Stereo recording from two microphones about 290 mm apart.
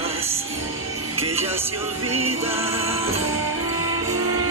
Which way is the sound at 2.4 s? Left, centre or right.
Centre.